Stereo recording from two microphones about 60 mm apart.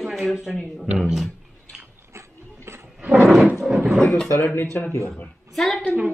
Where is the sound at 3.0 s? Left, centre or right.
Right.